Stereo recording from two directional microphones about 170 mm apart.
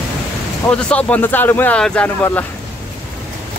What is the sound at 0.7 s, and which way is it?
A man's voice, 10° left (ahead or behind).